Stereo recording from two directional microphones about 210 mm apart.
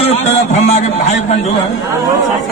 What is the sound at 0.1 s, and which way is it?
A man's voice, 30° left (ahead or behind).